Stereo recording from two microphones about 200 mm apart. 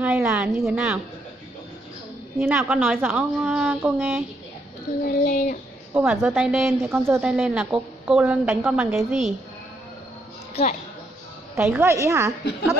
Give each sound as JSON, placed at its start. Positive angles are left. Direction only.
{"t": 0.0, "sound": "a woman's voice", "side_deg": -10}
{"t": 0.7, "sound": "a woman's voice", "side_deg": -5}
{"t": 2.3, "sound": "a woman's voice", "side_deg": -10}
{"t": 5.2, "sound": "a sound", "side_deg": 45}
{"t": 5.9, "sound": "a woman's voice", "side_deg": -5}
{"t": 10.5, "sound": "a woman's voice", "side_deg": 30}
{"t": 11.5, "sound": "a woman's voice", "side_deg": -10}